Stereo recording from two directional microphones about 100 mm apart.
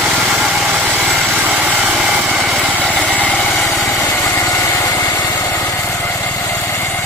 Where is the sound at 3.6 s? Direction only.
35° left (ahead or behind).